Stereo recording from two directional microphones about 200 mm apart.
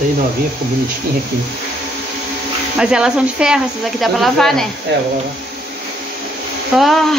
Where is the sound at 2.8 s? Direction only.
5° right (ahead or behind).